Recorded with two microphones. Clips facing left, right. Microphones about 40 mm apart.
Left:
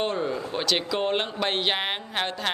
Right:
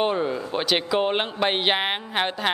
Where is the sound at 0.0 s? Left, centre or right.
Centre.